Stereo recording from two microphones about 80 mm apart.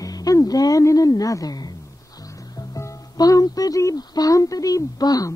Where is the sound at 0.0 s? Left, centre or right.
Left.